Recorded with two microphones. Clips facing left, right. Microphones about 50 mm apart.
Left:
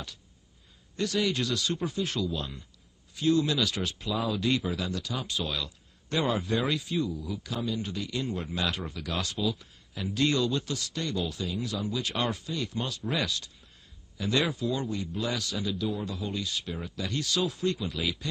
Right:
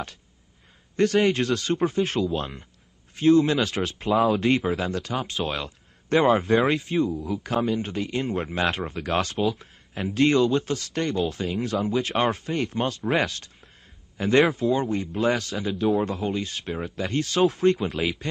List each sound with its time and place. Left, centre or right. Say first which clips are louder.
0.9 s speech: right 8 dB; right
4.1 s speech: right 8 dB; right